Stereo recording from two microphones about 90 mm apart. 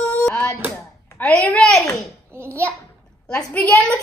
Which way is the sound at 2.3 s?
30° right (ahead or behind).